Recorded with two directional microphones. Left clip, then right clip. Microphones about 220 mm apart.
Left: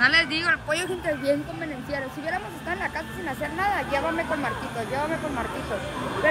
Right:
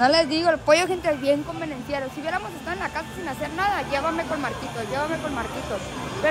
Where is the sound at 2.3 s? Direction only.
Centre (ahead or behind).